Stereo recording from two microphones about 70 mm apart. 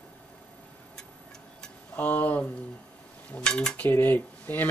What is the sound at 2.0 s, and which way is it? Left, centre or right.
Speech, left.